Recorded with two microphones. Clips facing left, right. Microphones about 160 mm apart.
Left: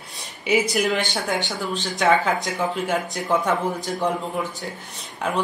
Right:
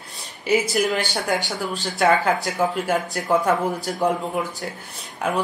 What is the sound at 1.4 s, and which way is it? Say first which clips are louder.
Speech: even; 40° right (ahead or behind).